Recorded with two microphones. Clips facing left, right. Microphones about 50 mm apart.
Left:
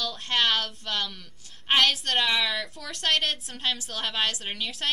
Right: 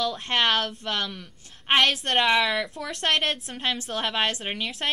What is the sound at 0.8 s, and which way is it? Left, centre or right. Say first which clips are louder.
A woman's voice: right 2 dB; right.